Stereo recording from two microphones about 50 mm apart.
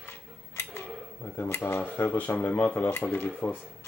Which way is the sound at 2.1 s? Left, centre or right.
Left.